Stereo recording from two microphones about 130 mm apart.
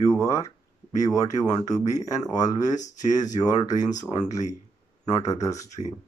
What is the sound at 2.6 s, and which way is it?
Speech, 70° left (ahead or behind).